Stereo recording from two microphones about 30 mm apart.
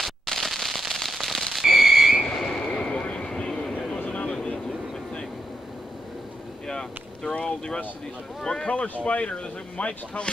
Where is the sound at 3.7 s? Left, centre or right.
Left.